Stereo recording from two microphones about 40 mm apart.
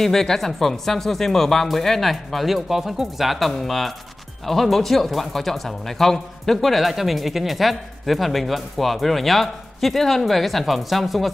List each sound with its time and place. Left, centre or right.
0.0 s speech: centre